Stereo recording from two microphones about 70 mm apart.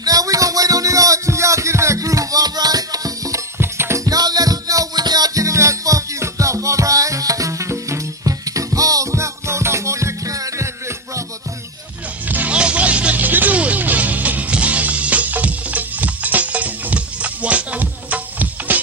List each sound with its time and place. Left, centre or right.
0.0 s music: right
3.5 s music: right
4.0 s music: right
12.3 s music: right